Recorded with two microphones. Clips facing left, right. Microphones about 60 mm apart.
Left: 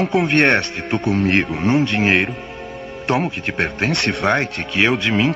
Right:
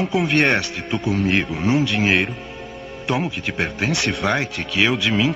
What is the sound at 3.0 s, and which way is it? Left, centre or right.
Speech, left.